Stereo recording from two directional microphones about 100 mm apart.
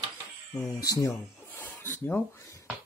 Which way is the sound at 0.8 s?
35° left (ahead or behind).